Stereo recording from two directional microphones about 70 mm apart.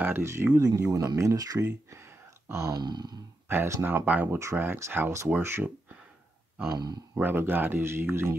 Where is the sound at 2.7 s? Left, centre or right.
Right.